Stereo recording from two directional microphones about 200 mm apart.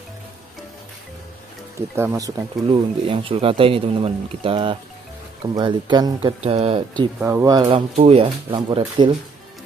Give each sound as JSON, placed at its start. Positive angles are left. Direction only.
{"t": 1.8, "sound": "speech", "side_deg": -15}
{"t": 2.7, "sound": "speech", "side_deg": -25}
{"t": 7.2, "sound": "speech", "side_deg": -15}